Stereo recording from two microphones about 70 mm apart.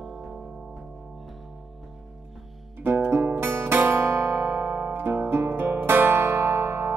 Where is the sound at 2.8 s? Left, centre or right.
Right.